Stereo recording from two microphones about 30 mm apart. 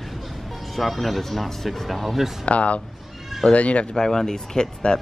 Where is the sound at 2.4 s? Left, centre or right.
Left.